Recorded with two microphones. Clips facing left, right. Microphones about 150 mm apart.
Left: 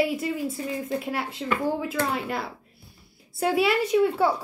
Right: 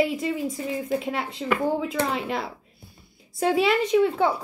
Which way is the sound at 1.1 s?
5° left (ahead or behind).